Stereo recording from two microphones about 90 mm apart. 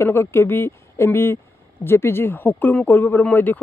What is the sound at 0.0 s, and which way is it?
Speech, 30° left (ahead or behind).